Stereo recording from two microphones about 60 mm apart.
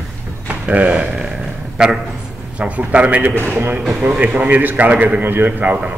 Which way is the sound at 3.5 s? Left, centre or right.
Right.